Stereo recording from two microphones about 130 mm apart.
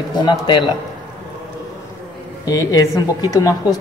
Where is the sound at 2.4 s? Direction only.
25° left (ahead or behind).